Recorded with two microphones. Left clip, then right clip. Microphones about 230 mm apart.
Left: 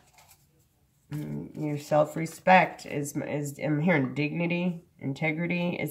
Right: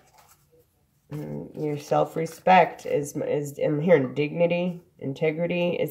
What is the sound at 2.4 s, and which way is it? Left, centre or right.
Speech, centre.